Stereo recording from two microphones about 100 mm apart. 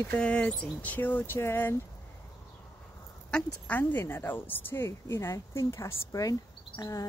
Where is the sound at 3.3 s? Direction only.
15° left (ahead or behind); by 7.0 s 35° left (ahead or behind).